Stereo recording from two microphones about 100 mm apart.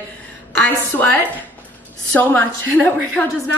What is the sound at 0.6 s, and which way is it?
Speech, 15° left (ahead or behind).